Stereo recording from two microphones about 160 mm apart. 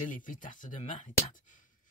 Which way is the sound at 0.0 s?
55° left (ahead or behind).